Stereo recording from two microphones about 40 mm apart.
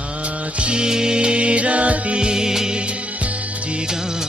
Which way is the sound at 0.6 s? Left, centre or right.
Right.